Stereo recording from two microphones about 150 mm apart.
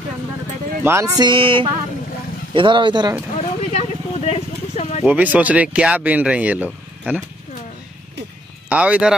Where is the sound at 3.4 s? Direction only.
45° left (ahead or behind).